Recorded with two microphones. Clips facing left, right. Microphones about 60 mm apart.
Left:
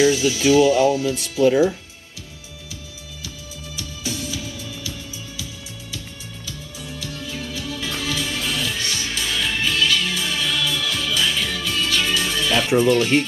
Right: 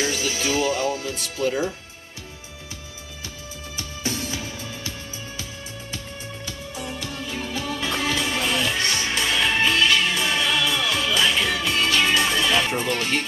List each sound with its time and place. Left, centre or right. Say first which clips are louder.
0.0 s speech: left 8 dB; right
1.5 s speech: left 9 dB; left
3.7 s music: right 1 dB; right
6.4 s music: right 2 dB; right